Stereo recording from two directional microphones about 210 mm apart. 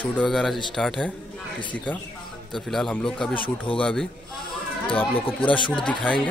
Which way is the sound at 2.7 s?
5° left (ahead or behind).